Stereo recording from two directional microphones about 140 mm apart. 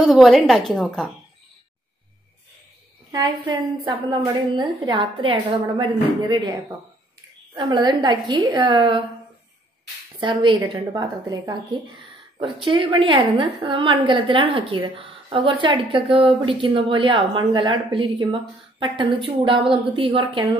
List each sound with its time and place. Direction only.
0.0 s a woman's voice: centre (ahead or behind)
3.1 s a woman's voice: 25° right (ahead or behind)
7.5 s a woman's voice: 35° right (ahead or behind)
10.2 s a woman's voice: 35° right (ahead or behind)